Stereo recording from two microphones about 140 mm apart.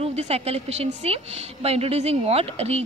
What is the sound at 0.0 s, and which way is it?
A woman's voice, 50° right (ahead or behind).